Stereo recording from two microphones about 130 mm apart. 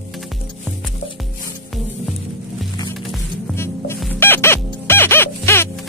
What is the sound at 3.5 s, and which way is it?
Music, 20° left (ahead or behind).